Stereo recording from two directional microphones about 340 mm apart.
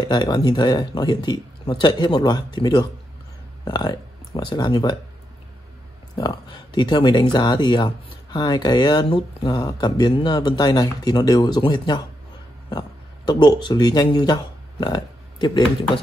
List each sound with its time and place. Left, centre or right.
0.1 s speech: centre
6.1 s speech: centre